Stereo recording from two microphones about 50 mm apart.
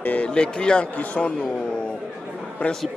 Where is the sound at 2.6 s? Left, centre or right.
Left.